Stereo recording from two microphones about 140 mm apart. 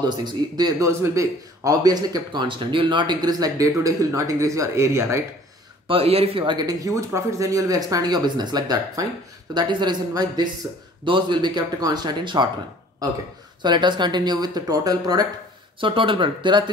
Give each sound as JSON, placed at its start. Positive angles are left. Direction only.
{"t": 0.1, "sound": "speech", "side_deg": -30}
{"t": 5.9, "sound": "speech", "side_deg": -45}
{"t": 13.6, "sound": "speech", "side_deg": -30}
{"t": 15.8, "sound": "speech", "side_deg": -35}